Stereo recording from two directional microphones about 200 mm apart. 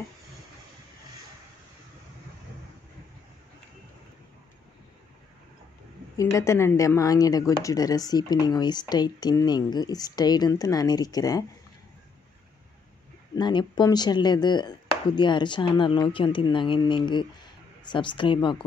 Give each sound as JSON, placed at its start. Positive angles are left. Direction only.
{"t": 6.1, "sound": "speech", "side_deg": 15}
{"t": 13.4, "sound": "speech", "side_deg": 20}